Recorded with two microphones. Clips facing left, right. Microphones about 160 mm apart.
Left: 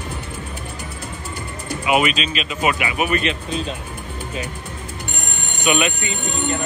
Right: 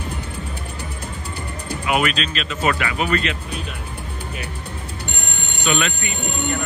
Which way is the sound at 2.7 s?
15° left (ahead or behind).